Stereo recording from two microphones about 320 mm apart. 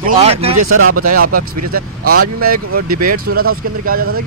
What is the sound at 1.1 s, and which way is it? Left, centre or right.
Speech, right.